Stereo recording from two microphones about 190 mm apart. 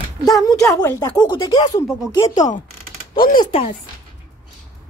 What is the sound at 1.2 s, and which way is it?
Speech, 25° left (ahead or behind).